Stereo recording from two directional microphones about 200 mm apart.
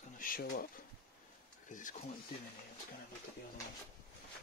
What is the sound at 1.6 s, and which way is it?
Speech, 40° left (ahead or behind).